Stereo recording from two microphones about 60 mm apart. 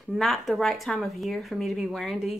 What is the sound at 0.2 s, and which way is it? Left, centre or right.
Speech, centre.